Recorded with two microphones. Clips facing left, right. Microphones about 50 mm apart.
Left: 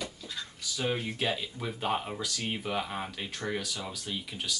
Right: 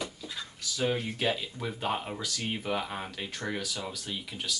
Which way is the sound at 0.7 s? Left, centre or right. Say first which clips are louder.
Right 1 dB; centre.